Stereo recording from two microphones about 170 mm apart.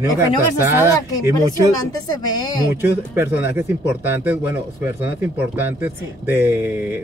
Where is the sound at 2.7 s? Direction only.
15° right (ahead or behind).